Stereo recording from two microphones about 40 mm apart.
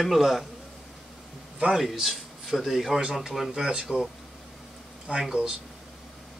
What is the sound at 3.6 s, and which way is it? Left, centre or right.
Speech, centre.